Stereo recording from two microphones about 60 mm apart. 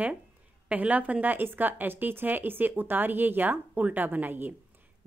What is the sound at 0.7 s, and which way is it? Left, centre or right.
A woman's voice, right.